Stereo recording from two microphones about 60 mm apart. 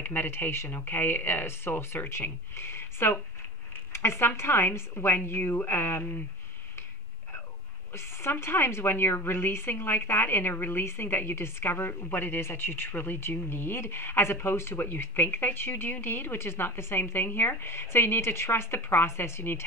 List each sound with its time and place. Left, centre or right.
0.0 s a woman's voice: left
3.7 s a sound: left
4.4 s a woman's voice: left
7.9 s a woman's voice: left